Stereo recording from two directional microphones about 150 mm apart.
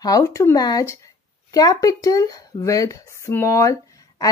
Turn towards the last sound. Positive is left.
turn(degrees=20)  # may be behind; listen again after turning